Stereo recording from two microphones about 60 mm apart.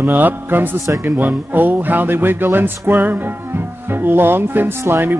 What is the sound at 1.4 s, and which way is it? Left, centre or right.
Music, right.